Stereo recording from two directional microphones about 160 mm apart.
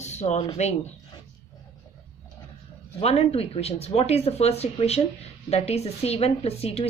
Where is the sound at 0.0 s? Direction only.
45° left (ahead or behind).